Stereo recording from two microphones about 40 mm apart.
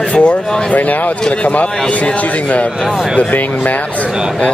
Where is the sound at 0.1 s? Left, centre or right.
Left.